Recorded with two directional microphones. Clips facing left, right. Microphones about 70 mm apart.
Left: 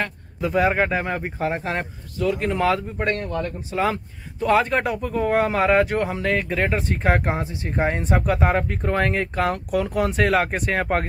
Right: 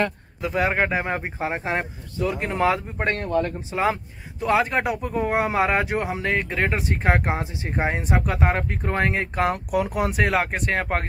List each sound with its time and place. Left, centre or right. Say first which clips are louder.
0.4 s speech: left 3 dB; centre; by 4.0 s right
4.4 s speech: left 2 dB; centre
7.8 s speech: left 2 dB; centre
10.2 s speech: left 3 dB; centre